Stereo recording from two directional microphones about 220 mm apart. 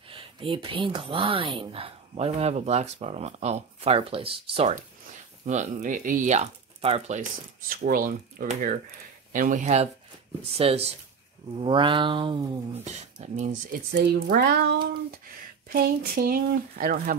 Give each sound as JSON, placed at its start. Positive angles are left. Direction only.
{"t": 0.1, "sound": "speech", "side_deg": -25}
{"t": 7.7, "sound": "speech", "side_deg": -40}
{"t": 13.9, "sound": "speech", "side_deg": -45}